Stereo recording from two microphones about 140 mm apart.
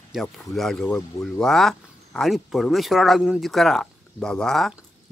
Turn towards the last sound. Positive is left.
turn(degrees=5)  # may be behind; listen again after turning